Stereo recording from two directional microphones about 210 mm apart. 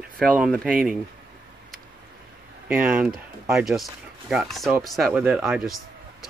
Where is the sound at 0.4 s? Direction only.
5° right (ahead or behind).